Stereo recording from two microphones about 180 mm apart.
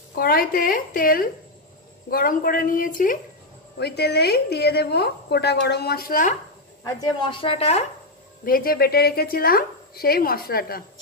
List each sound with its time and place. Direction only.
0.1 s a woman's voice: 55° left (ahead or behind)
3.7 s a woman's voice: 65° left (ahead or behind); by 6.3 s 50° left (ahead or behind)
6.8 s a woman's voice: 20° left (ahead or behind); by 7.8 s 35° left (ahead or behind)
8.5 s a woman's voice: 55° left (ahead or behind)